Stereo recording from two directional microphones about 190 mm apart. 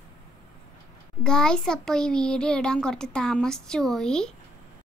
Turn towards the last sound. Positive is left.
turn(degrees=5)  # may be behind; listen again after turning